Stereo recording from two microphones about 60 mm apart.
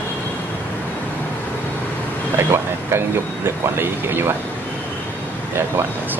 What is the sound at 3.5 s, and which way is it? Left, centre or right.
Speech, right.